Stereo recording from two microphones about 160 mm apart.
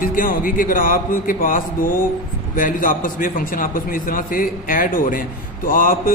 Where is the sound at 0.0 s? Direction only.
60° left (ahead or behind).